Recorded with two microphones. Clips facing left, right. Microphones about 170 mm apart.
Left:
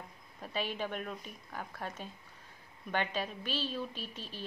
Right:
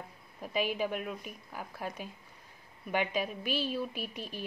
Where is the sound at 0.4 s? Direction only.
10° right (ahead or behind).